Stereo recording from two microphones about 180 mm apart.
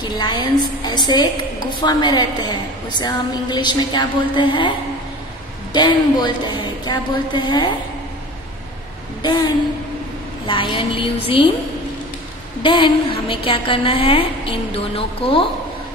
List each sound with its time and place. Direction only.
0.0 s a woman's voice: 25° left (ahead or behind)
10.4 s a woman's voice: 25° left (ahead or behind)
12.6 s a woman's voice: 25° left (ahead or behind)